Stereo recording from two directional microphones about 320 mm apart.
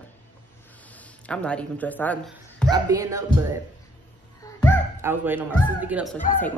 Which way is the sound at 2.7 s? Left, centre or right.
Centre.